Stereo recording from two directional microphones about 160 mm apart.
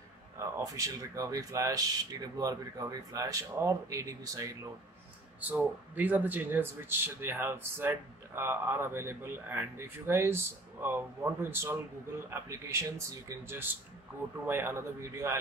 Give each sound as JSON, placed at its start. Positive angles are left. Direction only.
{"t": 0.4, "sound": "speech", "side_deg": -20}
{"t": 5.5, "sound": "speech", "side_deg": -10}
{"t": 14.4, "sound": "speech", "side_deg": -15}